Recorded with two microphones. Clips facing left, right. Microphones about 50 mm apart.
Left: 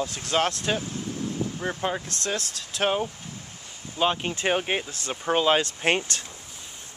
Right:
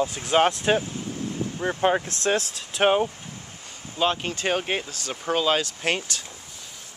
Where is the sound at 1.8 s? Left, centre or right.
Right.